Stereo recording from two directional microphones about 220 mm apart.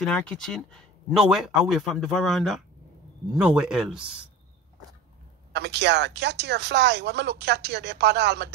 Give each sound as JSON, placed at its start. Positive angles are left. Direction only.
{"t": 0.0, "sound": "speech", "side_deg": 5}
{"t": 5.5, "sound": "speech", "side_deg": -50}